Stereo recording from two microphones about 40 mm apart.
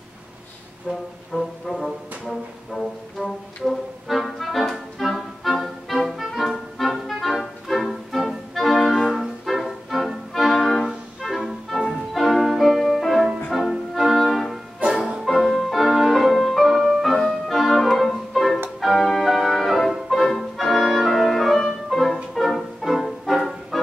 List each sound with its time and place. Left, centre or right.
0.8 s music: centre
3.2 s music: centre
14.9 s music: centre
15.2 s music: centre